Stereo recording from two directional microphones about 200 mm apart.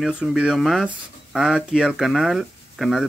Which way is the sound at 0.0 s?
5° right (ahead or behind).